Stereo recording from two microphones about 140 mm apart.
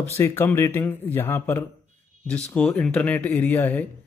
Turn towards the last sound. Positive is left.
turn(degrees=15)  # may be behind; listen again after turning